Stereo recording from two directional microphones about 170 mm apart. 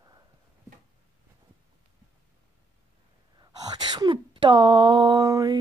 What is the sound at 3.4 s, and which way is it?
Speech, 25° right (ahead or behind).